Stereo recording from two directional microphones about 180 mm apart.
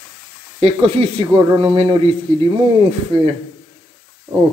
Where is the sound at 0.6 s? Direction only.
30° right (ahead or behind).